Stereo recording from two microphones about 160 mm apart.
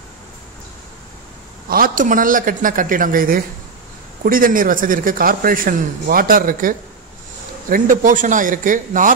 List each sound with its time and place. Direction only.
1.7 s a man's voice: 60° right (ahead or behind)
7.7 s a man's voice: 55° right (ahead or behind)